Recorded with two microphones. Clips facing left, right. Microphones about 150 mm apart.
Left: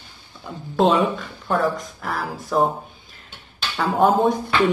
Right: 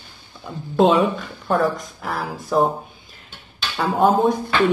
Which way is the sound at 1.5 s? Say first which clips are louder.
Right 2 dB; centre (ahead or behind).